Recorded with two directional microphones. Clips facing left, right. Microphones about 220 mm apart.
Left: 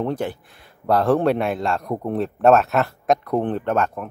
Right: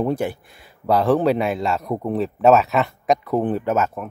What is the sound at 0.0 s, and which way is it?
Speech, 10° right (ahead or behind).